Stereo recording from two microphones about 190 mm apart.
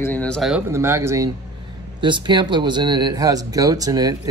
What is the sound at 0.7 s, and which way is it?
Speech, 15° right (ahead or behind).